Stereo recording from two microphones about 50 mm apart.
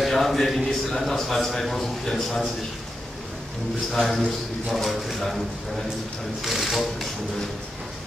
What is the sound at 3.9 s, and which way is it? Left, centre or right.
A man's voice, centre.